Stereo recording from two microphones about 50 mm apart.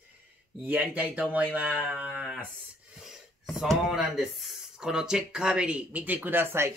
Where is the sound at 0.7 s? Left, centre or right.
Right.